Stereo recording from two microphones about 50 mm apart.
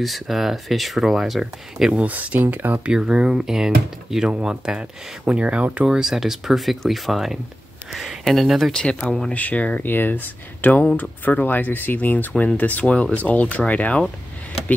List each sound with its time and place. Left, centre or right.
0.0 s speech: centre
2.0 s speech: right
2.4 s speech: right
2.8 s speech: centre
5.9 s speech: centre
8.7 s speech: centre
9.3 s speech: left